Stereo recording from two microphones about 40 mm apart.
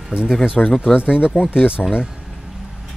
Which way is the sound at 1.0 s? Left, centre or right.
Left.